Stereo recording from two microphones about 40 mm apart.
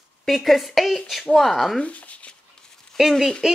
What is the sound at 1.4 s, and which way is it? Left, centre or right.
Speech, centre.